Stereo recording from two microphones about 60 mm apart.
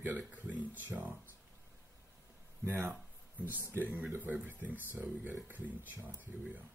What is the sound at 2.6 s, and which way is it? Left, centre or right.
Speech, right.